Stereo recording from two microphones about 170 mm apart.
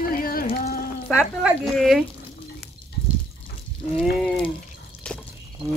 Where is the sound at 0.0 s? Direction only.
60° left (ahead or behind).